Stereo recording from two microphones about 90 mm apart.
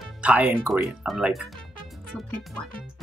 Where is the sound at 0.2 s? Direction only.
15° right (ahead or behind).